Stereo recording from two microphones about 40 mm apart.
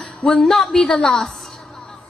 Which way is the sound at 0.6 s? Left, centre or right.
Centre.